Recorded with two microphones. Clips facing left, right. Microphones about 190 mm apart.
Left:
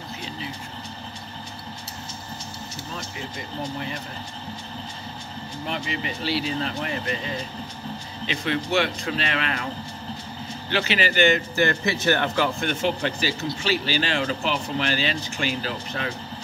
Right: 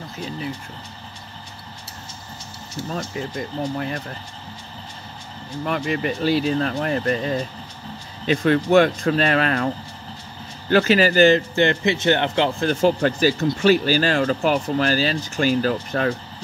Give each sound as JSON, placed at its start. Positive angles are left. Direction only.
{"t": 5.7, "sound": "speech", "side_deg": -50}
{"t": 10.7, "sound": "speech", "side_deg": -45}